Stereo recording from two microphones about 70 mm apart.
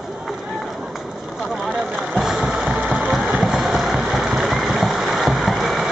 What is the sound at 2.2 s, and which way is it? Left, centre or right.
Music, centre.